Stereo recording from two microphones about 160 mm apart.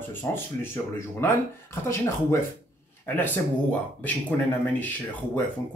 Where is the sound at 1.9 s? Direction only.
15° left (ahead or behind).